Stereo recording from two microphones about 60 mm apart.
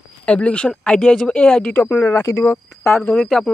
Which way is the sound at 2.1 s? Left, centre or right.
Left.